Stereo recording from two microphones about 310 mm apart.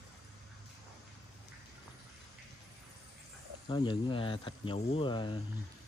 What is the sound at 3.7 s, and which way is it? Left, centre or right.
Speech, centre.